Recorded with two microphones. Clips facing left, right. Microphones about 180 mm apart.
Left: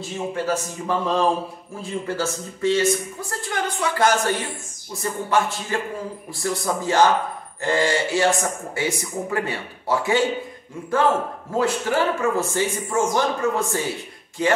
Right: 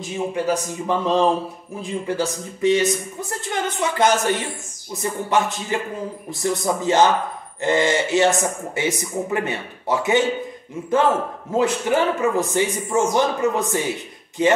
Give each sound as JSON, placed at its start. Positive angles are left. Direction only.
{"t": 0.3, "sound": "speech", "side_deg": -15}
{"t": 11.5, "sound": "speech", "side_deg": -20}